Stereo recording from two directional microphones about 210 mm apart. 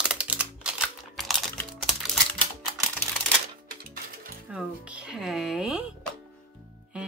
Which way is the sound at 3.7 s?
45° right (ahead or behind).